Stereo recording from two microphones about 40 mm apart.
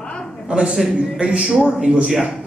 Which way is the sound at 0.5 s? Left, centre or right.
Right.